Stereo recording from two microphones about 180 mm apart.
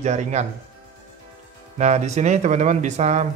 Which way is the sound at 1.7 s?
40° right (ahead or behind).